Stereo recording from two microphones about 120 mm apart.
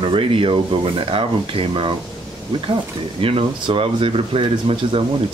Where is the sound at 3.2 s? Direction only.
50° right (ahead or behind).